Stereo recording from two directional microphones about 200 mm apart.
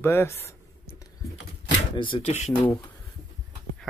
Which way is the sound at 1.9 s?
25° left (ahead or behind).